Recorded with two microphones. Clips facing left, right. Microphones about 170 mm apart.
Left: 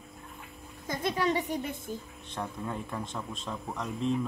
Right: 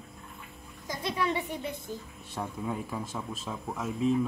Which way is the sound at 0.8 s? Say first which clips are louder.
Left 2 dB; 50° left (ahead or behind).